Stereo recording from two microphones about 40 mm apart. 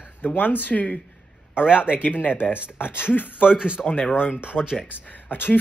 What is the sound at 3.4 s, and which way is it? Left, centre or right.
Speech, right.